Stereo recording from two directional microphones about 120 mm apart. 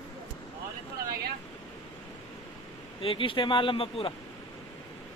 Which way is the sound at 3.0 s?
45° left (ahead or behind).